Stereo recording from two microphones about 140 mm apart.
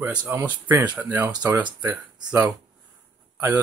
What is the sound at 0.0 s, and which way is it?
Speech, 10° right (ahead or behind).